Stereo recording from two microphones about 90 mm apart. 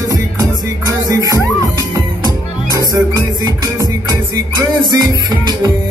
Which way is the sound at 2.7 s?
45° right (ahead or behind).